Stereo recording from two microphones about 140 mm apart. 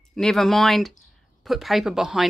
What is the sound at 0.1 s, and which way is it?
Speech, 5° left (ahead or behind).